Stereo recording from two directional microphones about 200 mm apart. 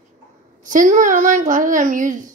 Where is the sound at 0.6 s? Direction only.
40° right (ahead or behind).